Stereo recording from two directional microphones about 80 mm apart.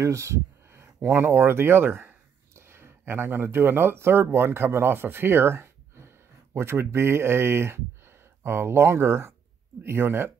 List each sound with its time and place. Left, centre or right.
0.0 s speech: right